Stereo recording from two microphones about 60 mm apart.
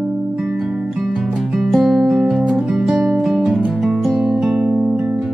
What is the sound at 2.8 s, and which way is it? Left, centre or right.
Music, centre.